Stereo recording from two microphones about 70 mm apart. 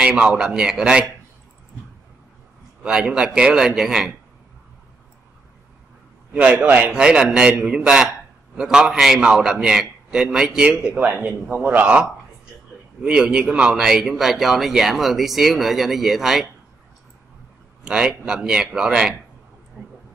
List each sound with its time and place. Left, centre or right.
0.0 s a man's voice: centre
2.8 s a man's voice: centre
6.3 s a man's voice: centre
17.8 s a man's voice: centre